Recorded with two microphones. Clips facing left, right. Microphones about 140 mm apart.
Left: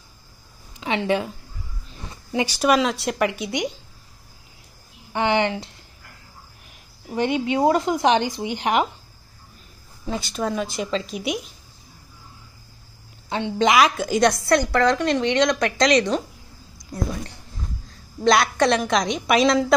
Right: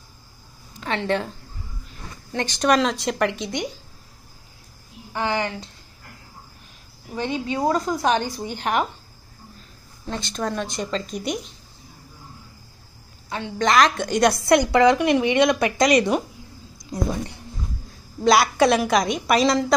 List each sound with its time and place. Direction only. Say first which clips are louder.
0.7 s speech: left 2 dB; 15° left (ahead or behind)
2.3 s a woman's voice: left 1 dB; 10° left (ahead or behind)
5.1 s speech: left 4 dB; 20° left (ahead or behind)
7.5 s speech: left 2 dB; 20° left (ahead or behind)
10.0 s a woman's voice: left 2 dB; 5° left (ahead or behind)
13.3 s speech: left 2 dB; 20° left (ahead or behind)
13.7 s a woman's voice: even; 5° left (ahead or behind)
14.4 s a woman's voice: right 3 dB; 15° right (ahead or behind)
18.2 s a woman's voice: right 1 dB; 5° right (ahead or behind)